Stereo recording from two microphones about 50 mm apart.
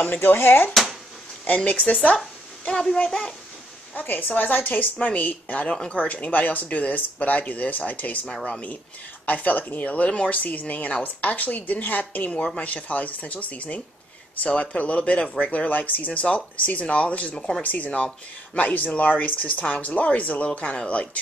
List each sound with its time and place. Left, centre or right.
0.2 s speech: left
1.4 s speech: left
2.7 s speech: centre
3.9 s speech: left
5.7 s speech: centre
5.9 s speech: left